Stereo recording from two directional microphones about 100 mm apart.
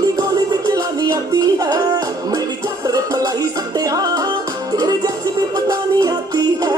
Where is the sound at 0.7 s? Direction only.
35° right (ahead or behind).